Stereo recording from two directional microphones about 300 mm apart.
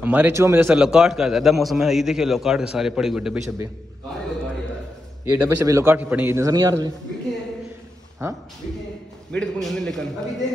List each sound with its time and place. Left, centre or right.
0.0 s a man's voice: centre
5.2 s a man's voice: centre
8.2 s a man's voice: centre